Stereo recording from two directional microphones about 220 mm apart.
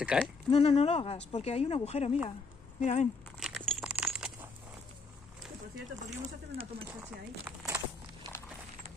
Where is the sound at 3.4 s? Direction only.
Centre (ahead or behind).